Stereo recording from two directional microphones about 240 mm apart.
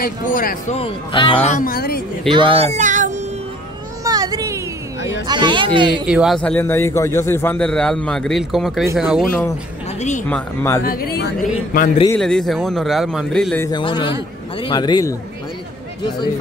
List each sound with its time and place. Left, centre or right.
0.0 s speech: left
0.7 s speech: left
2.2 s speech: right
4.0 s a sound: centre
5.2 s speech: centre
6.0 s a man's voice: centre
9.9 s speech: left
10.2 s speech: centre
10.8 s speech: left
12.2 s a man's voice: centre
13.7 s speech: centre